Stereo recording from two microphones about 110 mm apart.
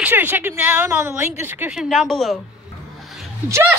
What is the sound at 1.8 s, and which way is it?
Speech, centre (ahead or behind).